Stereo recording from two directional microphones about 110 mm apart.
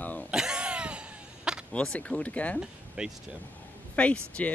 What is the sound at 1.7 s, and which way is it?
Speech, 10° left (ahead or behind).